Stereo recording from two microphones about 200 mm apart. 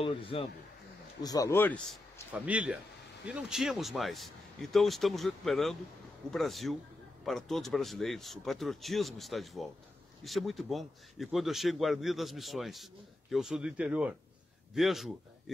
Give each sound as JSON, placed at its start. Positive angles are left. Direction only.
{"t": 0.0, "sound": "speech", "side_deg": 25}
{"t": 2.3, "sound": "a man's voice", "side_deg": -5}